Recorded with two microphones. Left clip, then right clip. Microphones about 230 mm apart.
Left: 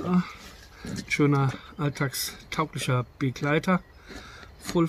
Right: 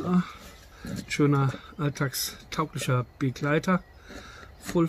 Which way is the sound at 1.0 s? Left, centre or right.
Centre.